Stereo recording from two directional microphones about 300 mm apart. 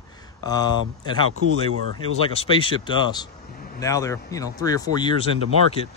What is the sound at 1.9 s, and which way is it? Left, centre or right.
Speech, centre.